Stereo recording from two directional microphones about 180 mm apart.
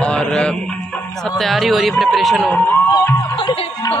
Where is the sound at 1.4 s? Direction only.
Centre (ahead or behind).